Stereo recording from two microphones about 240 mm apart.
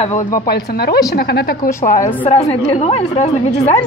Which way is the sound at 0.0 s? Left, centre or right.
Left.